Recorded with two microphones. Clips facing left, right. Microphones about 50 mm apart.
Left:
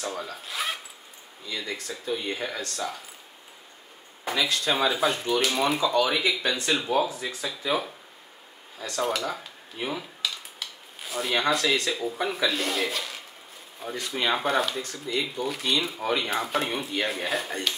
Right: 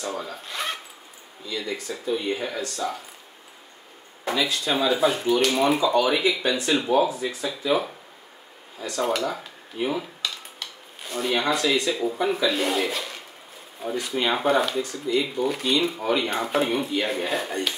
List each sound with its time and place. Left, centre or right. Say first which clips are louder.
0.0 s speech: right 2 dB; centre
4.2 s speech: right 2 dB; centre
8.9 s dishes: right 3 dB; centre
11.9 s speech: right 5 dB; centre